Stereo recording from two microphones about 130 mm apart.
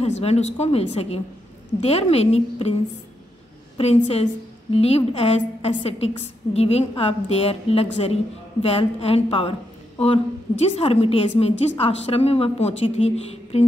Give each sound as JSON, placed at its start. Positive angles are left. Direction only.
{"t": 0.0, "sound": "a woman's voice", "side_deg": 55}
{"t": 3.7, "sound": "a woman's voice", "side_deg": 50}